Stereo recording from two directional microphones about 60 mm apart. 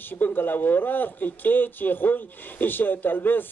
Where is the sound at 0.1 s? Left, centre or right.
Left.